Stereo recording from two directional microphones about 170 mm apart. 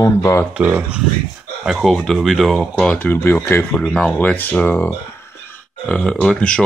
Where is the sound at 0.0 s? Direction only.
15° left (ahead or behind).